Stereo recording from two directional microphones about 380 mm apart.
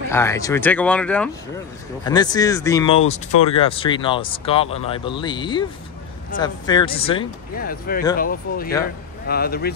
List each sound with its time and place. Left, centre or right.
0.1 s speech: centre; by 9.7 s left